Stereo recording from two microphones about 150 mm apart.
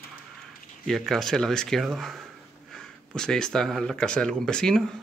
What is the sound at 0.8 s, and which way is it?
Speech, centre (ahead or behind).